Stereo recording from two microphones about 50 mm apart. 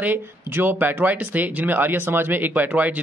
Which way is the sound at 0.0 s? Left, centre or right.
Right.